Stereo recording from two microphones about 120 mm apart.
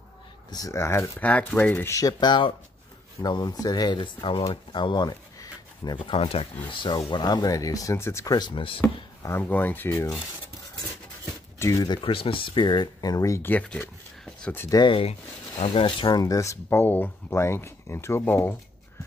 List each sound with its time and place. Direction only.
0.5 s speech: 30° left (ahead or behind)
2.0 s speech: 35° left (ahead or behind); by 6.4 s 55° left (ahead or behind)
6.7 s speech: 45° left (ahead or behind); by 8.4 s 25° left (ahead or behind)
8.4 s speech: 45° left (ahead or behind)
9.4 s speech: 15° left (ahead or behind)
11.5 s speech: 25° left (ahead or behind)
12.0 s speech: 50° left (ahead or behind); by 13.5 s 25° left (ahead or behind)
13.5 s speech: 15° left (ahead or behind)
14.7 s speech: 35° left (ahead or behind)
15.6 s speech: 50° left (ahead or behind)
16.1 s speech: 30° left (ahead or behind)